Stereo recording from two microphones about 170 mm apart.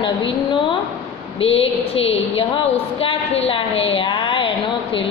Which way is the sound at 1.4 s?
35° left (ahead or behind).